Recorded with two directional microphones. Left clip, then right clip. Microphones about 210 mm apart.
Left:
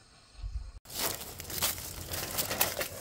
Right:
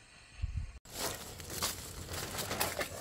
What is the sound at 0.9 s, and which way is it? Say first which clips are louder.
Crumpling: left 4 dB; 40° left (ahead or behind).